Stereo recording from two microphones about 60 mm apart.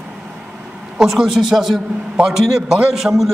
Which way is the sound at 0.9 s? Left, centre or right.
Centre.